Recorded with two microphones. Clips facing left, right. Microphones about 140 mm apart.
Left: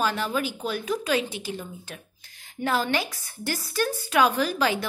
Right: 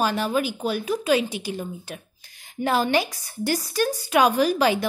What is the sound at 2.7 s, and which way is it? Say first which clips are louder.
A woman's voice: right 4 dB; 15° right (ahead or behind).